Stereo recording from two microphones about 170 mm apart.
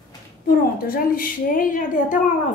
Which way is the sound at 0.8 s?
55° left (ahead or behind).